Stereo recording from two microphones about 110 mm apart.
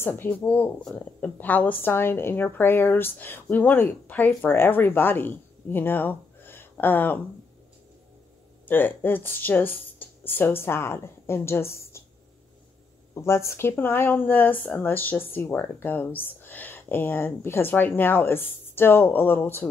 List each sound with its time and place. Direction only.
0.0 s speech: 20° left (ahead or behind)
8.6 s speech: 15° left (ahead or behind)
13.1 s speech: 25° left (ahead or behind)